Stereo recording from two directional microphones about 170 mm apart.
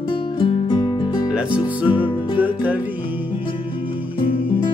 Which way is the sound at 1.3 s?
10° right (ahead or behind).